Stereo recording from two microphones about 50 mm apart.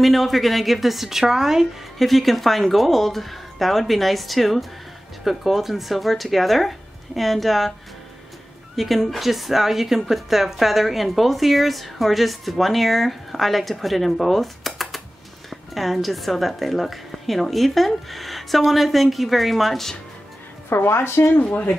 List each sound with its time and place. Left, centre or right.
0.0 s speech: centre
2.0 s speech: centre
8.7 s speech: centre
20.7 s speech: left
21.4 s speech: left